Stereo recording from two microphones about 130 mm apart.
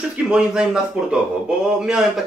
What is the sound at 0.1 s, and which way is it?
A man's voice, 10° right (ahead or behind).